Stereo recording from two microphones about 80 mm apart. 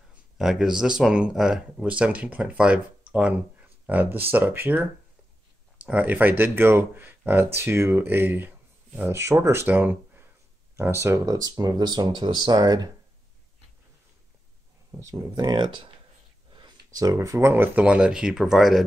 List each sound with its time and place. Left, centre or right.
0.4 s speech: centre; by 4.8 s right
5.9 s speech: centre
9.7 s a sound: right
10.8 s speech: right
15.0 s speech: right
15.3 s speech: right
16.5 s a sound: right
17.0 s speech: right
17.8 s speech: centre